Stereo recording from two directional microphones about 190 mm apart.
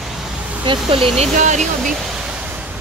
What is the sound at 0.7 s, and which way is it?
Speech, 30° right (ahead or behind).